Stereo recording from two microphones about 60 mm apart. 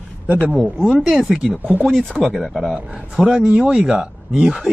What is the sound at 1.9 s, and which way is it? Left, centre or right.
Speech, centre.